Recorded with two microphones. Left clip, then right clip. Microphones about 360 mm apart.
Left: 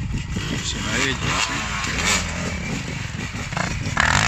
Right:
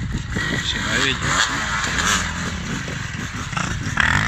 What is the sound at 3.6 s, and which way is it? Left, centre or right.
Dog, left.